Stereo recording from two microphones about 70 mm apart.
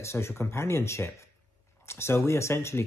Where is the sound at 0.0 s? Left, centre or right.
Left.